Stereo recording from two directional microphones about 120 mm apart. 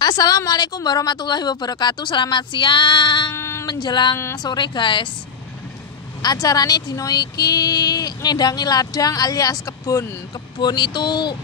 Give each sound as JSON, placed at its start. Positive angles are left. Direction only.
{"t": 0.0, "sound": "speech", "side_deg": 35}
{"t": 3.3, "sound": "a sound", "side_deg": 20}
{"t": 3.6, "sound": "speech", "side_deg": 40}
{"t": 6.2, "sound": "speech", "side_deg": 30}